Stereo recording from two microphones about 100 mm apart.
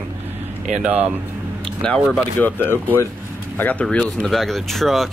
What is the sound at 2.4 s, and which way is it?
Speech, 20° left (ahead or behind).